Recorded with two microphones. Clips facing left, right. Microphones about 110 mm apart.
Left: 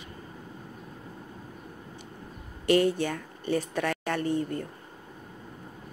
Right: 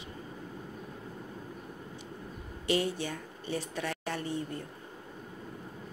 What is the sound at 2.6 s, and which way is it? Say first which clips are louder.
Speech: left 7 dB; 55° left (ahead or behind).